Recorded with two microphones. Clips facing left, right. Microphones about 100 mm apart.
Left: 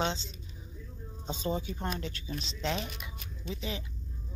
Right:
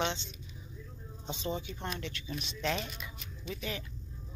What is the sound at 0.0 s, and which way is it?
Speech, 35° left (ahead or behind).